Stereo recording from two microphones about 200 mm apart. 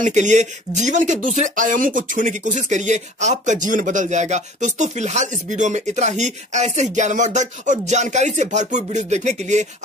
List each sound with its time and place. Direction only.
0.0 s speech: 35° right (ahead or behind)